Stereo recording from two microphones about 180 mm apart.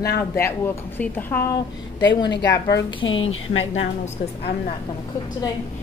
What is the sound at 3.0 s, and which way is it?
Speech, 90° left.